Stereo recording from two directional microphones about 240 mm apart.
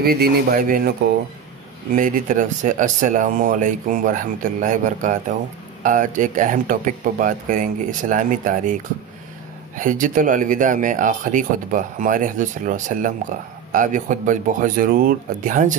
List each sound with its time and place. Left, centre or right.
0.0 s speech: right
2.0 s speech: right
9.8 s speech: right